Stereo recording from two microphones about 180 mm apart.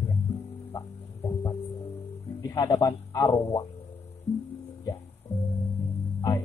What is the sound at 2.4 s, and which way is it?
Speech, 20° left (ahead or behind).